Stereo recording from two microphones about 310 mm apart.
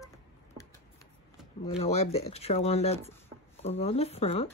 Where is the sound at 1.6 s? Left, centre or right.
Centre.